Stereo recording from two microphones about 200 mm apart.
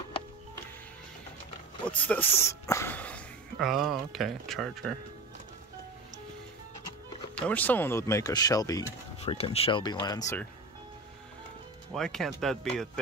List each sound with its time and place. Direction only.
1.9 s speech: 10° left (ahead or behind)
7.3 s speech: 5° left (ahead or behind)
9.2 s speech: 30° left (ahead or behind)
11.9 s speech: centre (ahead or behind)